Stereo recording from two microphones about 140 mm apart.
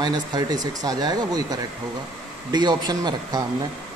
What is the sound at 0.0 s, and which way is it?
A man's voice, 30° right (ahead or behind).